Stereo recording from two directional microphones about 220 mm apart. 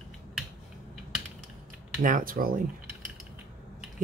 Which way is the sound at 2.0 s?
40° right (ahead or behind).